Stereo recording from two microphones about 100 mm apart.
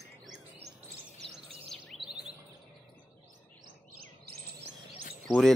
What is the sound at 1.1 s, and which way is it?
Bird vocalization, 90° right.